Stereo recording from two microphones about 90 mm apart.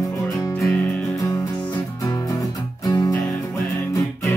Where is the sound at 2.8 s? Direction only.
40° left (ahead or behind).